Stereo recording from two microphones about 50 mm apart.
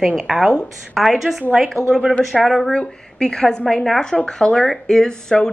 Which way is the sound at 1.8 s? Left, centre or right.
Left.